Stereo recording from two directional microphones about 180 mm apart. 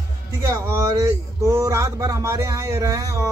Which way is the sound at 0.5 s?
15° right (ahead or behind).